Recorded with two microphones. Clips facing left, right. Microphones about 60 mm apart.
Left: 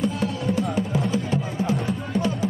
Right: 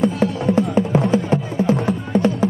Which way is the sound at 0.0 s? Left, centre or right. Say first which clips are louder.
Right 6 dB; right.